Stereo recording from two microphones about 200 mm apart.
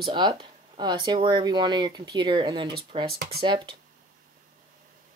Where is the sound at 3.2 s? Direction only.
50° right (ahead or behind).